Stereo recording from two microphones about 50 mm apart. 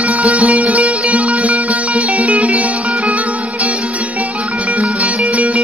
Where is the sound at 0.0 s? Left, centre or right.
Right.